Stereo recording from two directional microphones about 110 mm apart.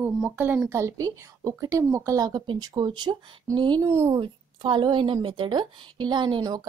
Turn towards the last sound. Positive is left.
turn(degrees=-40)  # may be behind; listen again after turning